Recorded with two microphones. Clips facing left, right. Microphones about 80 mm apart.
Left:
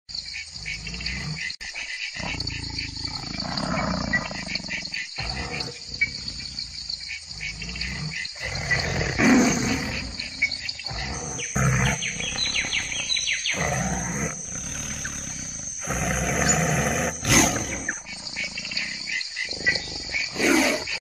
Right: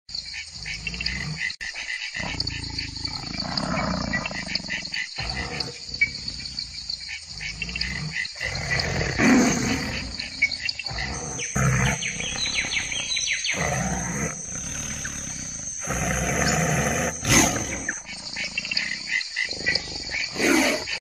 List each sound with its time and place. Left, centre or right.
1.0 s dog: right
3.3 s wild animals: centre
4.6 s wild animals: right
8.5 s roar: centre
11.1 s wild animals: centre
15.9 s roar: centre
18.9 s dog: right
20.3 s wild animals: centre